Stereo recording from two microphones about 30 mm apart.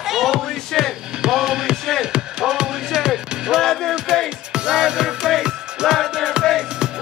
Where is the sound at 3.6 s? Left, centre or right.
Centre.